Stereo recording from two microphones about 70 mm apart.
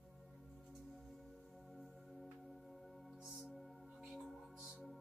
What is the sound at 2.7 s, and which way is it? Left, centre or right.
Music, centre.